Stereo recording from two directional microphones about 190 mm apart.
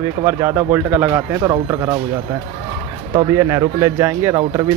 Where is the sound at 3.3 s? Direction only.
15° right (ahead or behind).